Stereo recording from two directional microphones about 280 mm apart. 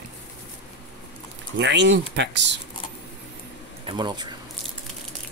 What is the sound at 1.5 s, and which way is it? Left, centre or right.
Speech, right.